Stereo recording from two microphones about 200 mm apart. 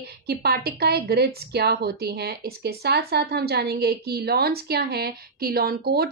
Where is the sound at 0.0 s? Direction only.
50° right (ahead or behind).